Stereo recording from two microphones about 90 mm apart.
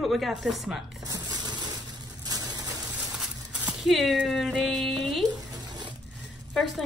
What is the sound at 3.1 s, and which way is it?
Speech, 5° right (ahead or behind).